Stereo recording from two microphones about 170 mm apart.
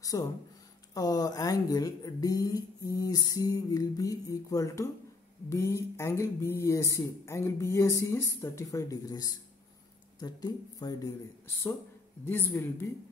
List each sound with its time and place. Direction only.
0.0 s speech: 20° left (ahead or behind)
12.3 s speech: 10° left (ahead or behind)